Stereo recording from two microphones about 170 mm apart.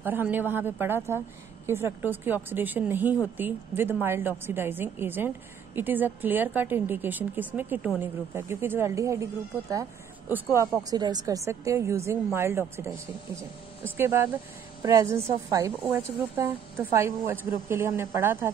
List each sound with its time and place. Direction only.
0.0 s a woman's voice: 10° right (ahead or behind)
13.9 s a woman's voice: 15° right (ahead or behind)